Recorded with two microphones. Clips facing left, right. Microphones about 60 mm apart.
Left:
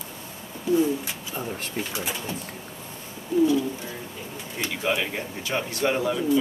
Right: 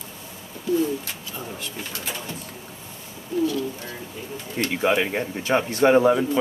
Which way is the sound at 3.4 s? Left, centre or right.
Centre.